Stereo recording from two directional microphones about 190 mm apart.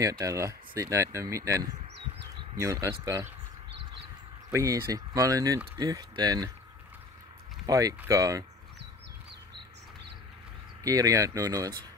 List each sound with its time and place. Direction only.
0.0 s speech: 15° right (ahead or behind)
4.5 s speech: 15° right (ahead or behind)
7.6 s speech: 20° right (ahead or behind)
10.8 s speech: 20° right (ahead or behind)